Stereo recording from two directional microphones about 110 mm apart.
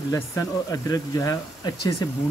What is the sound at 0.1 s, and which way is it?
Speech, 30° left (ahead or behind).